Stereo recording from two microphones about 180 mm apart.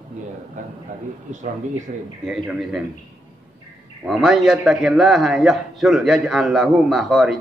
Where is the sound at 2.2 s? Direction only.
5° right (ahead or behind).